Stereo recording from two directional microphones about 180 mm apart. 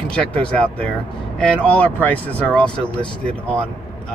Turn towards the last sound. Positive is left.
turn(degrees=5)  # may be behind; listen again after turning